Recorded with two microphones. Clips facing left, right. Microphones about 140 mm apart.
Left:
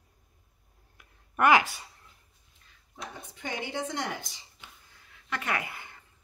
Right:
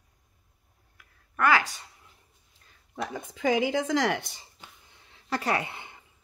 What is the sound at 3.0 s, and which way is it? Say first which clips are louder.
Speech: right 12 dB; 90° right.